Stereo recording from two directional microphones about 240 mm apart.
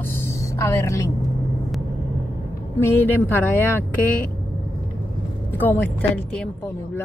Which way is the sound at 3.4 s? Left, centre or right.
Centre.